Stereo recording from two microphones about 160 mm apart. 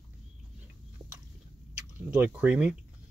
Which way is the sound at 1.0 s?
25° right (ahead or behind).